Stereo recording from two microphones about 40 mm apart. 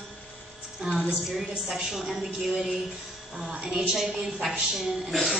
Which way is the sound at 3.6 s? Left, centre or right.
Centre.